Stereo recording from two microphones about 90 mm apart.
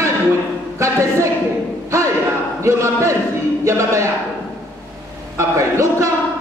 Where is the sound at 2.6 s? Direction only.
35° right (ahead or behind).